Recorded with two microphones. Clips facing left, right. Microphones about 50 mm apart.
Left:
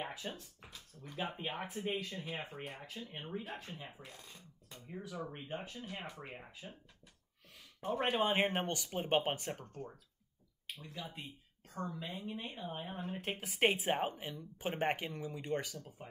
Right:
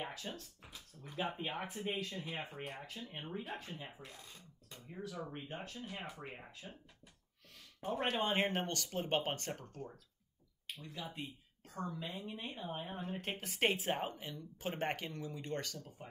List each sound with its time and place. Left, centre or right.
0.0 s speech: centre
0.7 s speech: centre
7.8 s speech: centre
8.1 s speech: centre
13.9 s speech: left